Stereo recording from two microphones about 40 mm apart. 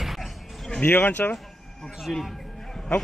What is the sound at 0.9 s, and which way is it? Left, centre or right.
Speech, left.